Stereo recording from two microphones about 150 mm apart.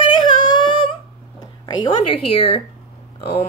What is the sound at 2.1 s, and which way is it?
Speech, 40° left (ahead or behind).